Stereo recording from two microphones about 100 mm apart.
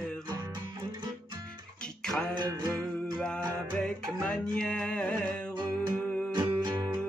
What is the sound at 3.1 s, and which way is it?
Music, 5° left (ahead or behind).